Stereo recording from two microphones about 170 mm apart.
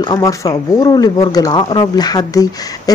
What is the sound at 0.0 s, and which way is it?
Speech, 20° left (ahead or behind).